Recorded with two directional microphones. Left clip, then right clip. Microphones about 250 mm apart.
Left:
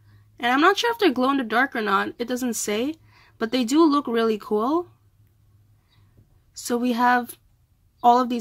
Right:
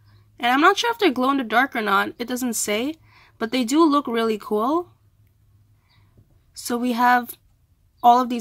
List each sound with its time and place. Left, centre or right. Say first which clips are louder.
0.4 s speech: right 2 dB; centre
6.5 s speech: even; centre